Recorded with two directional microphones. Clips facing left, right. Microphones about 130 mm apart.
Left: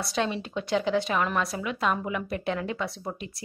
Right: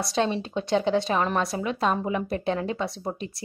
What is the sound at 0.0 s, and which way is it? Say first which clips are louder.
Speech: right 3 dB; 30° right (ahead or behind).